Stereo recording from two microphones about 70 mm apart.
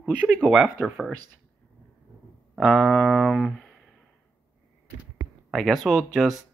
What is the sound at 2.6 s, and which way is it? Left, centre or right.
Speech, centre.